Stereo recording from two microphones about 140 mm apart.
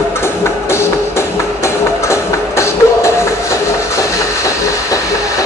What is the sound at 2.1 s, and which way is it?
Music, 20° left (ahead or behind).